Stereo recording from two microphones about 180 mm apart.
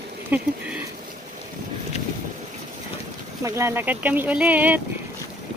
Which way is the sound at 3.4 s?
15° right (ahead or behind).